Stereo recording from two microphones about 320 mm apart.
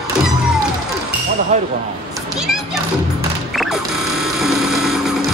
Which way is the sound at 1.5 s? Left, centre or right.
Right.